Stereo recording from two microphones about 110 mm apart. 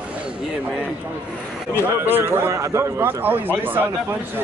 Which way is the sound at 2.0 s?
20° right (ahead or behind).